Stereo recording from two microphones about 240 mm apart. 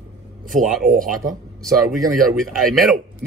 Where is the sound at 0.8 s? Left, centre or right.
Right.